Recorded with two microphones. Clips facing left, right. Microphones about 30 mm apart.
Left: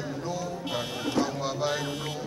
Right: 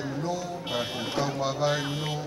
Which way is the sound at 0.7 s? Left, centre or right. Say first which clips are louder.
Right 2 dB; centre.